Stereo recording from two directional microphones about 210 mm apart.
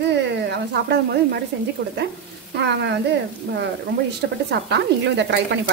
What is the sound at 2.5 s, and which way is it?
Speech, 55° right (ahead or behind).